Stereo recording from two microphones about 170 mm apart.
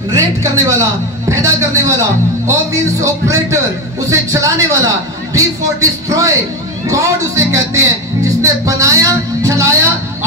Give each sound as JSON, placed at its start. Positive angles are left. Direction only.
{"t": 0.1, "sound": "a man's voice", "side_deg": -20}